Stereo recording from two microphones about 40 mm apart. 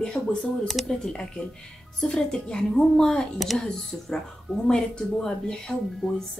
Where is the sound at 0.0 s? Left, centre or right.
Left.